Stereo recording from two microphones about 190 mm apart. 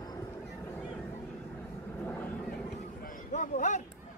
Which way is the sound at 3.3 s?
40° left (ahead or behind).